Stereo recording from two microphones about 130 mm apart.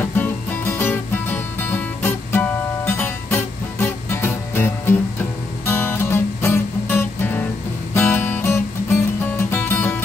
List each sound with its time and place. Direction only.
0.0 s music: 15° left (ahead or behind)